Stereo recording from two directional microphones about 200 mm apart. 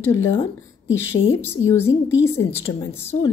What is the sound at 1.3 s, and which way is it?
A woman's voice, 10° left (ahead or behind).